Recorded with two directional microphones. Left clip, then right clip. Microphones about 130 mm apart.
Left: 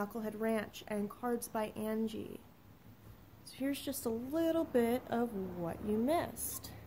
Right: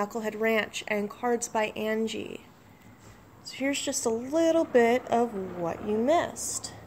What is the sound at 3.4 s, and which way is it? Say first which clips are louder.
A woman's voice: right 10 dB; 10° left (ahead or behind).